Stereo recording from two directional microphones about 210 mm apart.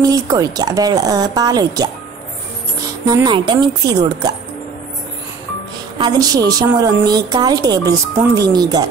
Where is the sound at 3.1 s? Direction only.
20° right (ahead or behind).